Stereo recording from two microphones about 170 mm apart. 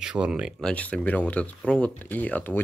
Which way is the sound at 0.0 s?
5° right (ahead or behind).